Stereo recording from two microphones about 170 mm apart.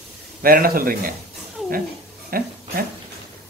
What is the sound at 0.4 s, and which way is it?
Speech, 60° right (ahead or behind).